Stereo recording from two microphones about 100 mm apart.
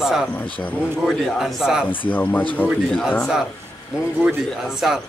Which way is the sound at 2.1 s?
15° left (ahead or behind).